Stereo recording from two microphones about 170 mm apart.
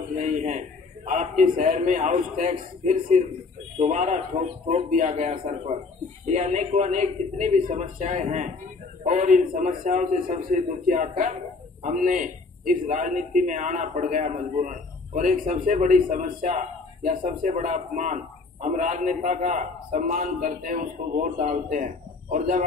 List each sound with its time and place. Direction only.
0.2 s a man's voice: 45° right (ahead or behind)
5.3 s a man's voice: 30° right (ahead or behind)
6.2 s a man's voice: 45° right (ahead or behind)